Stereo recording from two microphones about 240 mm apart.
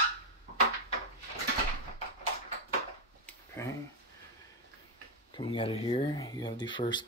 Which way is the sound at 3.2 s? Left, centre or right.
Centre.